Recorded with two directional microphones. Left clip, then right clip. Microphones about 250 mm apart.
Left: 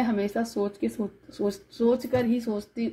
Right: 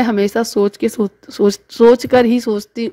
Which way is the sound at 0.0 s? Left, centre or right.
Right.